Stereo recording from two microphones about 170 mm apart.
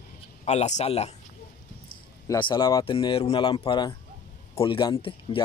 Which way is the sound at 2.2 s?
30° left (ahead or behind).